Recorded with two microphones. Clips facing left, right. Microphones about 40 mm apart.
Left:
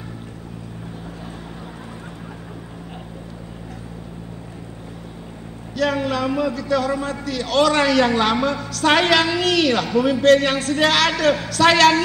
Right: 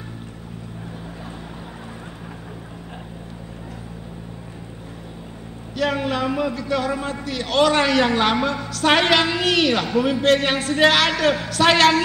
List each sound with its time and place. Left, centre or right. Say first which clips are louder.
5.8 s a man's voice: left 1 dB; centre
6.5 s music: left 2 dB; right
7.1 s a man's voice: left 1 dB; right